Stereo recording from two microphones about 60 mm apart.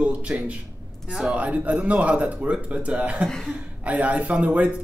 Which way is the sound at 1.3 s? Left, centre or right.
Right.